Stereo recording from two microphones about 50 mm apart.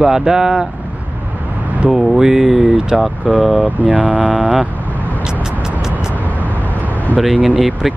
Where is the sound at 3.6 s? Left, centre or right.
Right.